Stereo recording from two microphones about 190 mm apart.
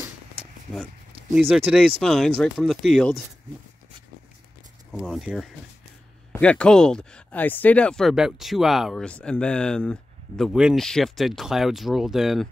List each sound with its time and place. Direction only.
1.5 s speech: centre (ahead or behind)
4.9 s speech: centre (ahead or behind)